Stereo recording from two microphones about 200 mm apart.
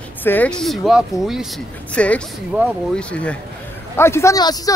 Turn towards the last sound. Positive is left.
turn(degrees=20)  # may be behind; listen again after turning